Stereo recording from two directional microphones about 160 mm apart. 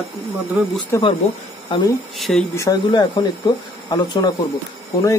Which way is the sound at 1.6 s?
30° left (ahead or behind).